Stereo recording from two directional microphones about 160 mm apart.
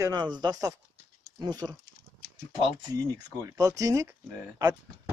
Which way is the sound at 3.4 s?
20° right (ahead or behind).